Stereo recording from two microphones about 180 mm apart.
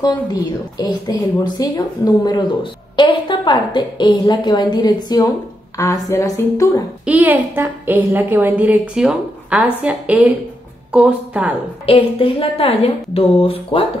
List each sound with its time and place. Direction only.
0.0 s a woman's voice: 20° left (ahead or behind)
7.1 s a woman's voice: 10° right (ahead or behind)
11.8 s a woman's voice: 30° left (ahead or behind)